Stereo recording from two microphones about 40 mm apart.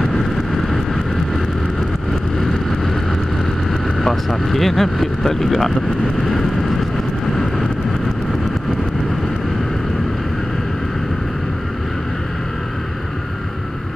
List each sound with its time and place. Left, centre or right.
4.0 s speech: centre